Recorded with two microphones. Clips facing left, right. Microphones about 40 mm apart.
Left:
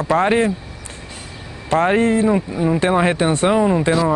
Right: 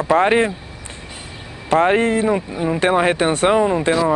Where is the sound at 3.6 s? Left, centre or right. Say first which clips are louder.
Even; centre.